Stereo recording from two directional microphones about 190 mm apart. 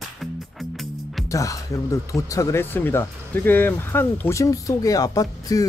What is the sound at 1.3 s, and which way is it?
Speech, 15° left (ahead or behind).